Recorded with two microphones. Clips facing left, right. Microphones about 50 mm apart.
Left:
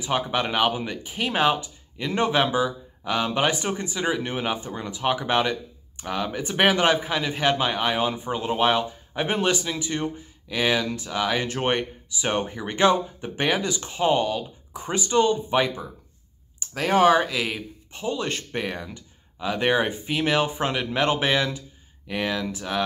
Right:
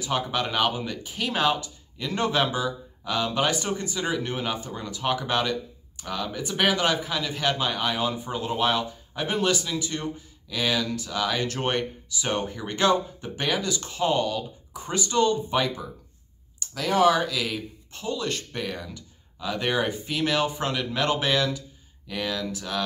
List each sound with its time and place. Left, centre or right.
0.0 s speech: left
16.5 s speech: left